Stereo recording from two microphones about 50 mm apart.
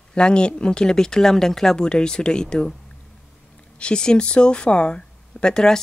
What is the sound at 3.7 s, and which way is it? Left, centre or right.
Speech, centre.